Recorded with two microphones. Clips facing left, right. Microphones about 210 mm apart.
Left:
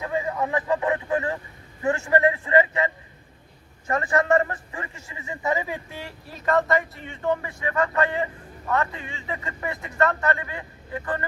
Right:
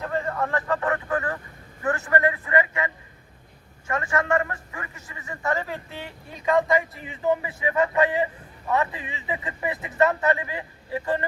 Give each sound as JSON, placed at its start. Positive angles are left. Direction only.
{"t": 0.0, "sound": "a man's voice", "side_deg": 5}
{"t": 5.6, "sound": "speech", "side_deg": 10}
{"t": 7.4, "sound": "a man's voice", "side_deg": -20}